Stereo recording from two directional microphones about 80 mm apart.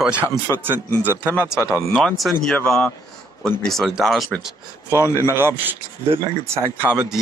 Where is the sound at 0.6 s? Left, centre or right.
Right.